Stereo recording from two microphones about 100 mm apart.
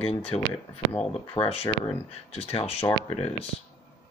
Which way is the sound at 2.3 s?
90° left.